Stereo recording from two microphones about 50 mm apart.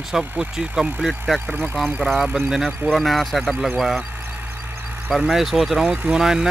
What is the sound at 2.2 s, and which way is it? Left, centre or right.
Speech, centre.